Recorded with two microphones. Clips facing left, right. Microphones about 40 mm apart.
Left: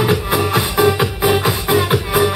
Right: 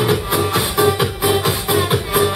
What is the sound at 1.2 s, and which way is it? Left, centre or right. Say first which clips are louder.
Music: left 2 dB; centre.